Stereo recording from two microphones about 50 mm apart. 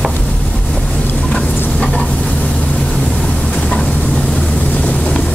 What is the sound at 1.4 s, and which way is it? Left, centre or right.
Stir, left.